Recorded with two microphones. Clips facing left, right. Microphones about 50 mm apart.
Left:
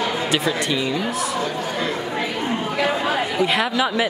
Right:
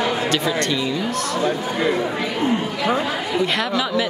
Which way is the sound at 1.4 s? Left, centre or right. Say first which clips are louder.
Right 3 dB; centre.